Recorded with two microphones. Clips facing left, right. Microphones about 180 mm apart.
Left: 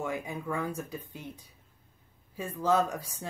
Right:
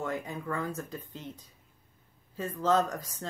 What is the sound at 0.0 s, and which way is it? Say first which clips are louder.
Speech: even; 10° left (ahead or behind).